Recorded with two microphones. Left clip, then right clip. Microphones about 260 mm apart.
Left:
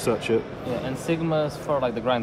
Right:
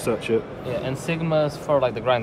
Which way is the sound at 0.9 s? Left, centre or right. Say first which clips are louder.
Even; right.